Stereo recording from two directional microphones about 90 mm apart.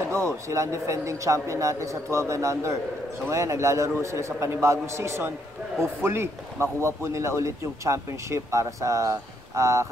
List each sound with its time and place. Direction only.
0.5 s speech: 35° right (ahead or behind)